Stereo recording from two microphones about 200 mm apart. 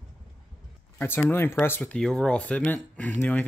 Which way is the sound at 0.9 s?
10° left (ahead or behind).